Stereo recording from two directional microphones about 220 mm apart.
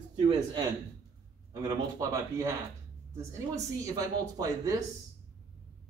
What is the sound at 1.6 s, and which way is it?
Speech, 15° right (ahead or behind).